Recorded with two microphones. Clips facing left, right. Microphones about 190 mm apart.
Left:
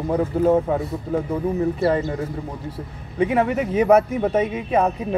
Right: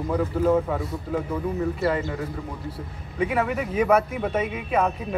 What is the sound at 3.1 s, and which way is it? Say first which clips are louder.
A man's voice: left 5 dB; 30° left (ahead or behind).